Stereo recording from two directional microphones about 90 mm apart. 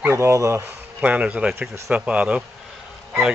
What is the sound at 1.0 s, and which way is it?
Speech, 15° right (ahead or behind).